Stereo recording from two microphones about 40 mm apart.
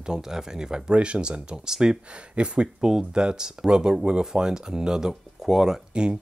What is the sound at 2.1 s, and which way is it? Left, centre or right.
Speech, right.